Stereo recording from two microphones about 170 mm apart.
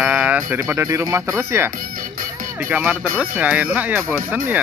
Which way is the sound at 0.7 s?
15° right (ahead or behind).